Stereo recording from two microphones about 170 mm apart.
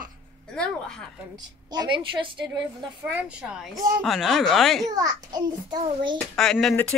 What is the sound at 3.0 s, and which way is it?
Speech, 5° right (ahead or behind).